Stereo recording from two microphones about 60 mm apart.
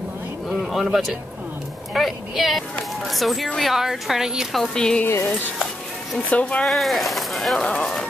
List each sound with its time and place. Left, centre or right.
0.5 s a sound: centre
2.0 s a woman's voice: centre
4.6 s speech: centre
5.0 s speech: left
6.6 s a woman's voice: centre
7.5 s speech: centre